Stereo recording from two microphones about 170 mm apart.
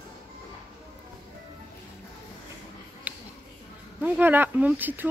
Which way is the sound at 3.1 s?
10° right (ahead or behind).